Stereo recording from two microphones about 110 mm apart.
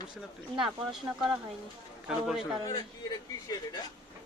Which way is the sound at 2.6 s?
40° left (ahead or behind).